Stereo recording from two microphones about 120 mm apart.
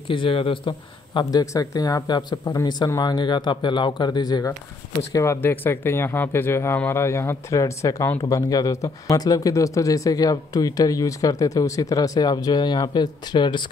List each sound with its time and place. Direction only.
0.1 s a man's voice: 45° left (ahead or behind)
1.4 s speech: 30° left (ahead or behind)
5.1 s speech: 25° left (ahead or behind); by 13.7 s 40° left (ahead or behind)